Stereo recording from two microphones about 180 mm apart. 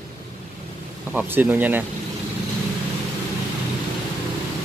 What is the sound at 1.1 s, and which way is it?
Speech, 10° right (ahead or behind).